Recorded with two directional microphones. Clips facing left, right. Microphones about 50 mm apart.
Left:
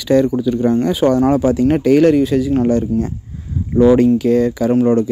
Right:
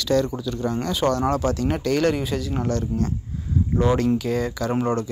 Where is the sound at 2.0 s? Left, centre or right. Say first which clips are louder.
Left 10 dB; centre.